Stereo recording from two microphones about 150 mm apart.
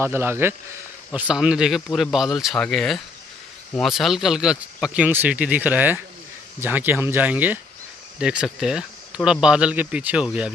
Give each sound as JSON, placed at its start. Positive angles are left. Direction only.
{"t": 0.0, "sound": "speech", "side_deg": -15}